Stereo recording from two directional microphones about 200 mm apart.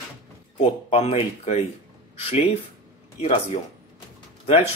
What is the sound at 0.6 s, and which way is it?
Speech, 30° left (ahead or behind).